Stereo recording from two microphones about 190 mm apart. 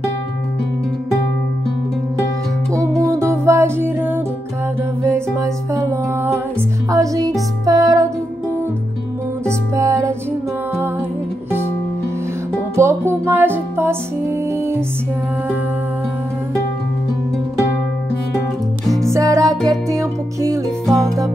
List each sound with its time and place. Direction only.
3.0 s music: 15° right (ahead or behind)
5.0 s humming: 15° right (ahead or behind)
6.9 s music: 20° right (ahead or behind)
9.5 s music: 15° right (ahead or behind)
12.7 s music: 15° right (ahead or behind)
19.0 s music: 15° right (ahead or behind)